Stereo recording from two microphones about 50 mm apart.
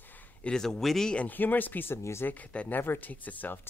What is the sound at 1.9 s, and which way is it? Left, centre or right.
Speech, left.